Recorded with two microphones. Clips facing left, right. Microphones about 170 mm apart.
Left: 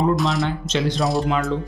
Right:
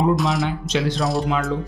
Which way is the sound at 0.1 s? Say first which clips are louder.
Even; centre (ahead or behind).